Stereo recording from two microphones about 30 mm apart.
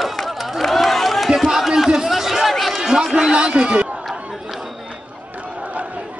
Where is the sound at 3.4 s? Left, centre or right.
Right.